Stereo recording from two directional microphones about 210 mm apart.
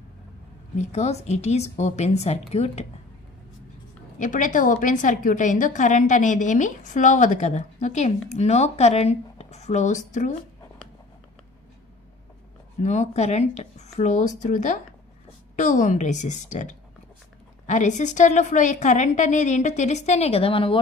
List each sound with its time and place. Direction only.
0.7 s a woman's voice: 30° left (ahead or behind)
4.2 s a woman's voice: 40° left (ahead or behind)
12.8 s a woman's voice: 30° left (ahead or behind)